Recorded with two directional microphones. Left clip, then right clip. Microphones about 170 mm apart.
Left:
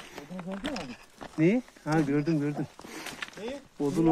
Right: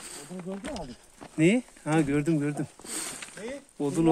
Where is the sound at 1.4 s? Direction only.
35° right (ahead or behind).